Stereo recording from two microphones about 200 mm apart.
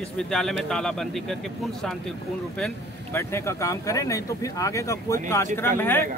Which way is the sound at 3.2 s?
15° left (ahead or behind).